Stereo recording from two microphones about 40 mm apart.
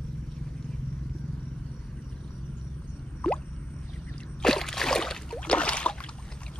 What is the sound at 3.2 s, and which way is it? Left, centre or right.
Plop, centre.